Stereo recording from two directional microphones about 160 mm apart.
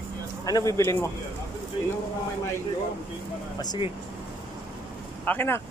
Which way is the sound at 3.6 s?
25° left (ahead or behind).